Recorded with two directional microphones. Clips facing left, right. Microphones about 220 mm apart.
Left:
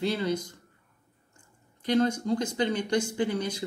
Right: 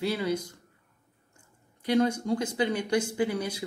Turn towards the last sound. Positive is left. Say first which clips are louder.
# even
turn(degrees=-10)  # may be behind; listen again after turning